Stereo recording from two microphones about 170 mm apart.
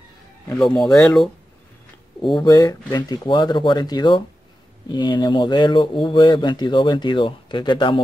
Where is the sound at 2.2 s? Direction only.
25° left (ahead or behind).